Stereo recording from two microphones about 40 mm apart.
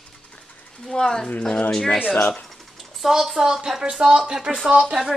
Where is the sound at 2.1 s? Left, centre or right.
Left.